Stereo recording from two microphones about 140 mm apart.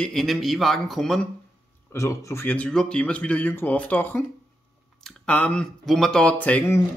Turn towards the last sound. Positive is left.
turn(degrees=10)  # may be behind; listen again after turning